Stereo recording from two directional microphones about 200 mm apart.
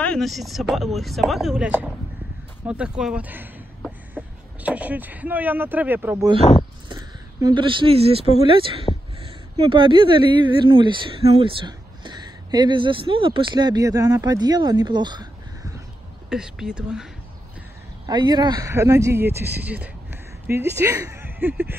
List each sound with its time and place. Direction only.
0.0 s speech: centre (ahead or behind)
2.6 s a sound: 5° right (ahead or behind)
4.6 s speech: 5° right (ahead or behind)
16.3 s speech: 5° right (ahead or behind)
18.0 s speech: 20° right (ahead or behind)